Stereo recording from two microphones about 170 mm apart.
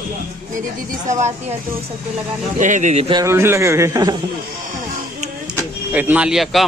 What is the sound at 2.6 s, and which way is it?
Speech, 45° right (ahead or behind).